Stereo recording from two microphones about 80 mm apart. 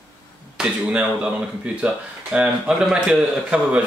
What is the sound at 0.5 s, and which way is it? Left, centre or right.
A man's voice, centre.